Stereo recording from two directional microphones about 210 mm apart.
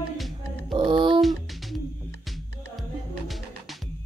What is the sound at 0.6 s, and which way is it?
Music, 20° right (ahead or behind).